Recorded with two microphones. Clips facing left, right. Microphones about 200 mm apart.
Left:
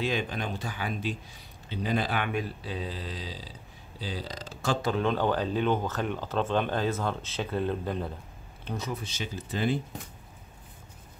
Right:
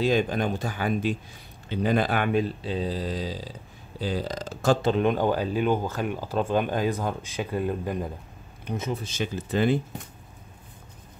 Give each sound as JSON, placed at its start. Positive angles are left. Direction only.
{"t": 0.0, "sound": "speech", "side_deg": -45}
{"t": 2.3, "sound": "speech", "side_deg": -25}
{"t": 4.8, "sound": "speech", "side_deg": -20}
{"t": 9.0, "sound": "speech", "side_deg": -50}